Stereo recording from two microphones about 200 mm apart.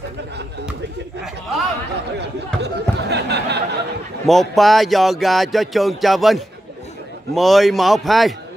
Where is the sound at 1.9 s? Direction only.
55° right (ahead or behind).